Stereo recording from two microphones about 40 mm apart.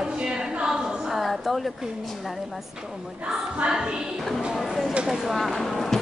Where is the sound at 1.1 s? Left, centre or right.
Centre.